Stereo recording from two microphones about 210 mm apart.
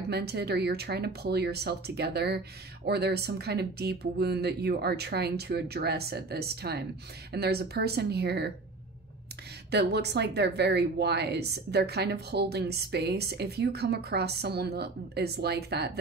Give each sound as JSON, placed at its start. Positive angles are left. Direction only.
{"t": 0.1, "sound": "speech", "side_deg": -50}
{"t": 9.7, "sound": "speech", "side_deg": -50}